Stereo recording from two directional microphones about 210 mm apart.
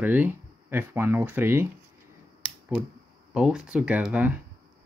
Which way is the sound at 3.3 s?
5° right (ahead or behind).